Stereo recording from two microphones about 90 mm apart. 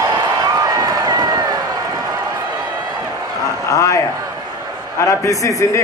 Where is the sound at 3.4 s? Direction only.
40° left (ahead or behind).